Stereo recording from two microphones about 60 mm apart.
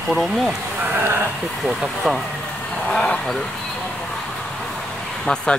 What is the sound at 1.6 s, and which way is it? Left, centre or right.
Speech, centre.